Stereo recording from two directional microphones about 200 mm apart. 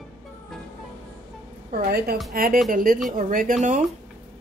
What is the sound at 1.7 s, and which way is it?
A woman's voice, 50° right (ahead or behind).